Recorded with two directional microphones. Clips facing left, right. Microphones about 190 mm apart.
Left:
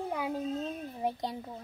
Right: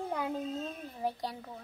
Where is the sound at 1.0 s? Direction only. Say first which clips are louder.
Left 1 dB; 20° left (ahead or behind).